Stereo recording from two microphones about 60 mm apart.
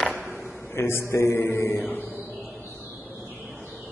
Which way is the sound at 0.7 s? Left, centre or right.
Left.